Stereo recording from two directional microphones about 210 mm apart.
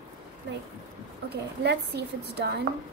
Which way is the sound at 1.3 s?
50° right (ahead or behind).